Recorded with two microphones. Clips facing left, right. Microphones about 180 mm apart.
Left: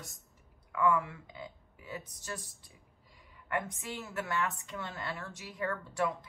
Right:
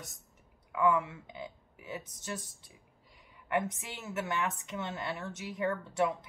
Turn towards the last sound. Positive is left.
turn(degrees=-20)  # may be behind; listen again after turning